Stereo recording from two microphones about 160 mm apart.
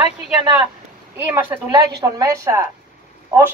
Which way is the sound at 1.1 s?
15° right (ahead or behind).